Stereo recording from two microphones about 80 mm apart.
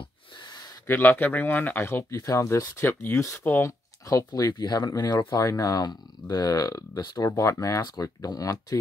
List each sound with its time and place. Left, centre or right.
0.8 s speech: left
4.3 s speech: left
5.3 s speech: left